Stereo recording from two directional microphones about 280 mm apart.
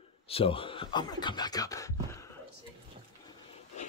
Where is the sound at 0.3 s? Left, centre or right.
Centre.